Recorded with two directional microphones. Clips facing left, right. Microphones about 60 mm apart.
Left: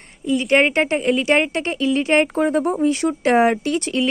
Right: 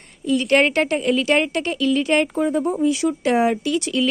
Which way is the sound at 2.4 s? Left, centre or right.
Left.